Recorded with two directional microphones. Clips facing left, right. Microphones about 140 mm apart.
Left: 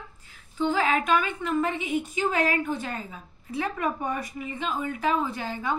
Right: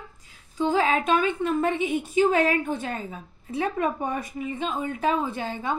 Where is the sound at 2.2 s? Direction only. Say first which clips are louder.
Right 5 dB; 25° right (ahead or behind).